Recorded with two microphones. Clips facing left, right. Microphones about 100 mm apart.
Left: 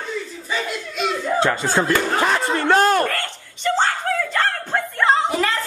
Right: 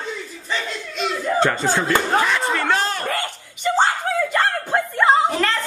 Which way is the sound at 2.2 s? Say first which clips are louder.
Left 1 dB; 35° left (ahead or behind).